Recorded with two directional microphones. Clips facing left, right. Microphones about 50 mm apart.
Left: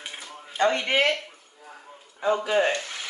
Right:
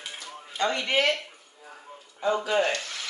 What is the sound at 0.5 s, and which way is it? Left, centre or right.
Speech, left.